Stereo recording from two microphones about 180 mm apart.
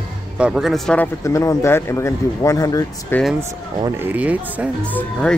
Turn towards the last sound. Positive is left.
turn(degrees=10)  # may be behind; listen again after turning